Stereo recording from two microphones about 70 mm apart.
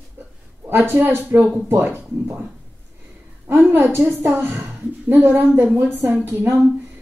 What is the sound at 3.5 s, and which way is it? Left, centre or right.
A woman's voice, right.